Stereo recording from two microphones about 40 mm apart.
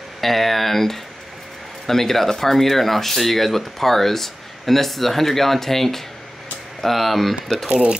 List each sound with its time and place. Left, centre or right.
0.2 s speech: centre
7.7 s speech: right